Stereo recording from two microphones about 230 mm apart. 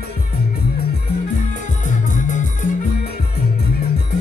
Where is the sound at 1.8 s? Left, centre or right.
Left.